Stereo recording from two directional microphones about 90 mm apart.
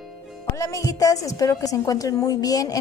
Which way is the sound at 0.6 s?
35° left (ahead or behind).